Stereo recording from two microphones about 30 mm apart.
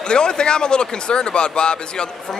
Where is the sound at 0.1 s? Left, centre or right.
Left.